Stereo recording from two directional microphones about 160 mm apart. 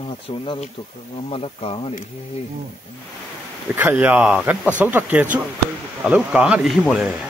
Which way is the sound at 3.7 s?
10° right (ahead or behind).